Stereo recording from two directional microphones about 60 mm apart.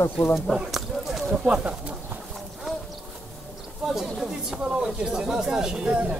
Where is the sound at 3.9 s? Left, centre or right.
Centre.